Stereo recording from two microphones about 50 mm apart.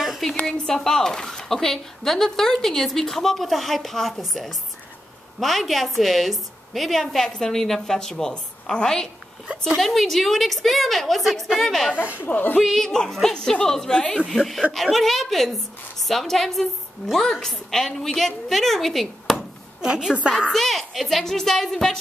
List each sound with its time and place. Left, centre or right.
0.5 s a woman's voice: centre
12.0 s speech: right
12.3 s a woman's voice: left
12.5 s a woman's voice: centre
14.3 s a woman's voice: centre
19.8 s a woman's voice: centre
20.5 s a woman's voice: centre